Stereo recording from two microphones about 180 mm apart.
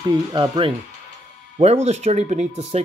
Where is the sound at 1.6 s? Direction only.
35° right (ahead or behind).